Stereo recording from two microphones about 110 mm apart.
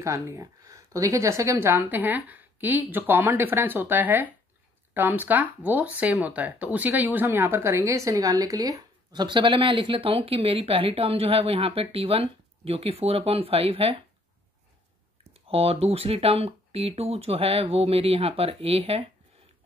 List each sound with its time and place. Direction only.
0.0 s speech: 30° right (ahead or behind); by 14.0 s 60° right (ahead or behind)
15.3 s speech: 65° right (ahead or behind)